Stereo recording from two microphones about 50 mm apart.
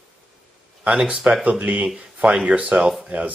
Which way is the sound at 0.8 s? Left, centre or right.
Right.